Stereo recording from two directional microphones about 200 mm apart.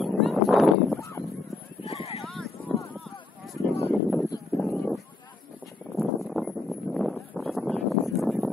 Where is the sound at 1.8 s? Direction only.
30° left (ahead or behind).